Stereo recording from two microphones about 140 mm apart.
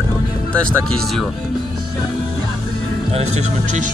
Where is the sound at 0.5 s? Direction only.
5° left (ahead or behind).